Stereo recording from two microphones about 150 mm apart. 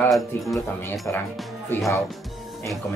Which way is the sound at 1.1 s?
15° left (ahead or behind).